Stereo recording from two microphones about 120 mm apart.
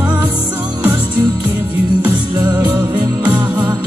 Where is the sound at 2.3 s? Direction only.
35° right (ahead or behind).